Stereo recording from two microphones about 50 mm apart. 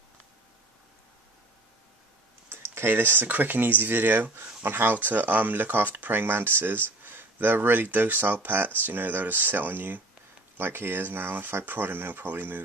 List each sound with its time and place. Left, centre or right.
2.5 s speech: right